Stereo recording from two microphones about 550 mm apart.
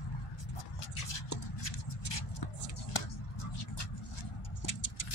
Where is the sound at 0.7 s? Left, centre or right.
Left.